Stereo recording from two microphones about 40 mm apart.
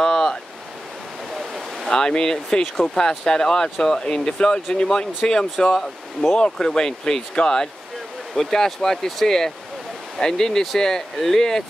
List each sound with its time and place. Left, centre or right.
0.0 s waves: centre
1.3 s a sound: centre
1.9 s speech: centre